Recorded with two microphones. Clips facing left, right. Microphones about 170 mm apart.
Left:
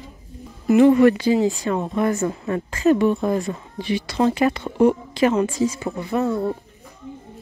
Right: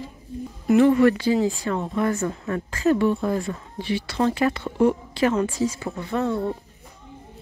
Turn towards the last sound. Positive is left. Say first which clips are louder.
# left 3 dB
turn(degrees=5)  # may be behind; listen again after turning